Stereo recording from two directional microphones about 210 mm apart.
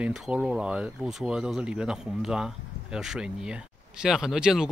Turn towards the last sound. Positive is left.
turn(degrees=-5)  # may be behind; listen again after turning